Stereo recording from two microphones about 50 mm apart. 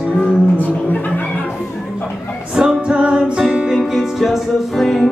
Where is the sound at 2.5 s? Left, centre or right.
Centre.